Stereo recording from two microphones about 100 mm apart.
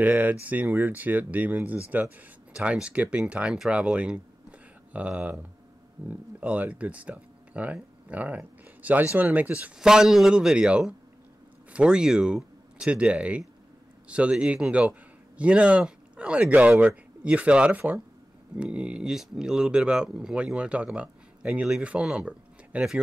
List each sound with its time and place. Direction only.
0.0 s a man's voice: 15° right (ahead or behind)